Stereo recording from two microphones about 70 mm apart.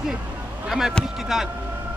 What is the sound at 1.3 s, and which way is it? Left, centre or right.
Vehicle, centre.